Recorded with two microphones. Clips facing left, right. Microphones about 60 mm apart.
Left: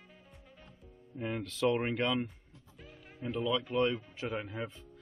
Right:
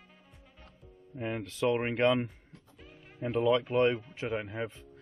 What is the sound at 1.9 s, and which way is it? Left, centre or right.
Speech, right.